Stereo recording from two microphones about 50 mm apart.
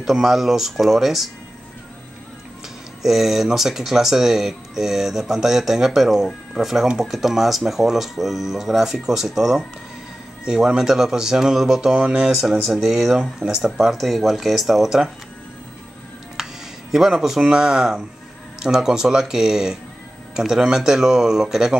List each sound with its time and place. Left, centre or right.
0.0 s speech: centre
3.0 s speech: centre
12.4 s speech: centre
16.4 s music: centre
16.9 s speech: centre